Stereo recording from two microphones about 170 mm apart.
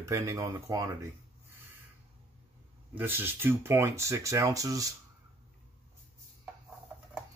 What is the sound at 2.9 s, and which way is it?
Speech, 10° right (ahead or behind).